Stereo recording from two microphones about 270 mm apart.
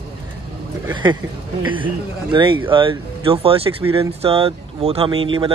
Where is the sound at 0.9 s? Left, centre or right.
Centre.